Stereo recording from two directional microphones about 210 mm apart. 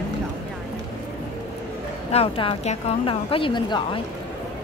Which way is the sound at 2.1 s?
25° left (ahead or behind).